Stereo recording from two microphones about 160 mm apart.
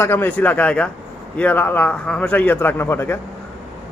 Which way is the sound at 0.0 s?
15° left (ahead or behind).